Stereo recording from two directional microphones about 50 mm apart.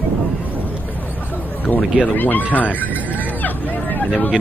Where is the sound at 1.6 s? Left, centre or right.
Left.